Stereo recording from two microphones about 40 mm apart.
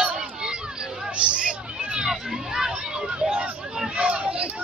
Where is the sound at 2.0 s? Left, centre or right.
Centre.